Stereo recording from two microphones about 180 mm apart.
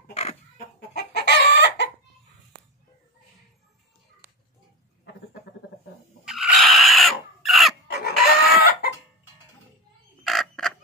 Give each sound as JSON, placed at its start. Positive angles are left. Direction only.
{"t": 0.1, "sound": "chicken", "side_deg": 35}
{"t": 0.7, "sound": "chicken", "side_deg": 65}
{"t": 6.2, "sound": "a sound", "side_deg": 0}
{"t": 7.9, "sound": "pig", "side_deg": 65}
{"t": 8.5, "sound": "chicken", "side_deg": 65}
{"t": 10.2, "sound": "crow", "side_deg": 0}